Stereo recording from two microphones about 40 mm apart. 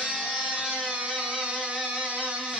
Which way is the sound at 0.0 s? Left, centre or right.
Right.